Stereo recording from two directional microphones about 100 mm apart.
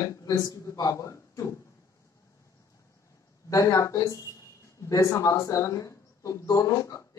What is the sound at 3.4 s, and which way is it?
A woman's voice, 35° left (ahead or behind).